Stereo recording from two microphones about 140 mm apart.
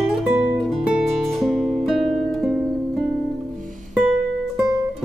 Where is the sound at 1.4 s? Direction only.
Centre (ahead or behind).